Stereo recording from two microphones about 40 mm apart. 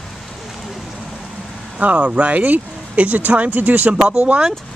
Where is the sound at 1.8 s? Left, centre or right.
Right.